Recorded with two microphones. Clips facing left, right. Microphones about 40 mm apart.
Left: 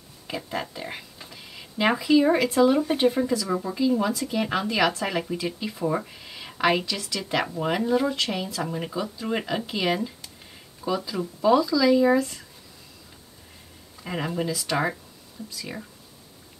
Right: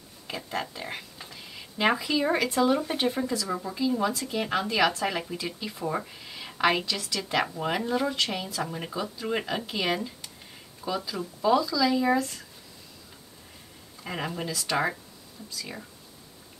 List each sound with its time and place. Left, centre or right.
0.3 s speech: centre
14.0 s speech: centre